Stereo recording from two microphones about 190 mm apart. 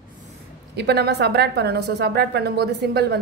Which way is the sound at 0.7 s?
60° right (ahead or behind).